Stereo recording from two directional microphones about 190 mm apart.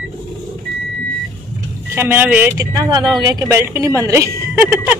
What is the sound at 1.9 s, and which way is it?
A woman's voice, 10° right (ahead or behind).